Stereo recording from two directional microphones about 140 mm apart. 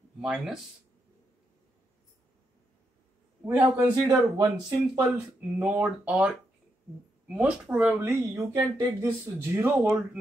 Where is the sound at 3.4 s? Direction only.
10° right (ahead or behind).